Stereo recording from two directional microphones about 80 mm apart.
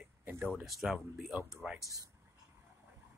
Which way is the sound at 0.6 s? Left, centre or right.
Centre.